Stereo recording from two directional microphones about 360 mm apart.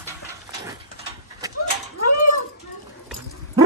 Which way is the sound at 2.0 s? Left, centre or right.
Left.